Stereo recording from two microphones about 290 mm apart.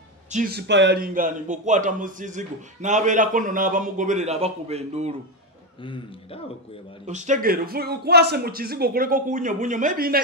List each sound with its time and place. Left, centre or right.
0.3 s a man's voice: right
5.8 s speech: centre
7.1 s speech: right